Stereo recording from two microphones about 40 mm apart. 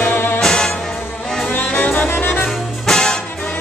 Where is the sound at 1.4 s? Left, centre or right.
Left.